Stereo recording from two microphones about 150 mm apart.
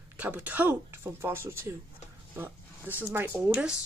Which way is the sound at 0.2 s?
10° right (ahead or behind).